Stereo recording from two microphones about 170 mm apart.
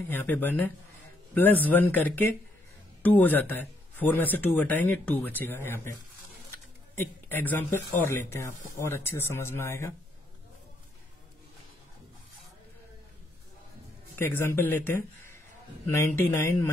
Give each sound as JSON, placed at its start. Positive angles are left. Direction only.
{"t": 0.1, "sound": "speech", "side_deg": 10}
{"t": 7.0, "sound": "speech", "side_deg": 10}
{"t": 14.1, "sound": "a man's voice", "side_deg": 15}